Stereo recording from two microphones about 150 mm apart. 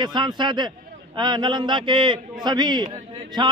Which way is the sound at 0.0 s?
30° right (ahead or behind).